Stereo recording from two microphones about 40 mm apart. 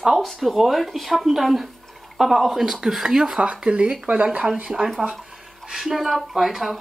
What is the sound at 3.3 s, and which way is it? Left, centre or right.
Speech, right.